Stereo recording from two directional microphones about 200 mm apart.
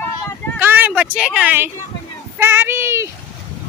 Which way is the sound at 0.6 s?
10° right (ahead or behind).